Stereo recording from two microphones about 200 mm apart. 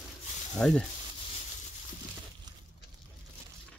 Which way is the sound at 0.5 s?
5° left (ahead or behind).